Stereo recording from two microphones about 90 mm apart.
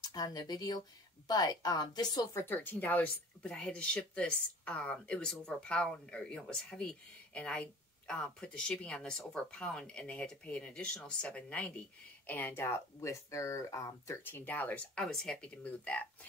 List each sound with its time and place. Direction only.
0.0 s a woman's voice: 45° left (ahead or behind)
2.3 s speech: 25° left (ahead or behind)
14.2 s speech: 20° left (ahead or behind)
15.0 s speech: 5° left (ahead or behind)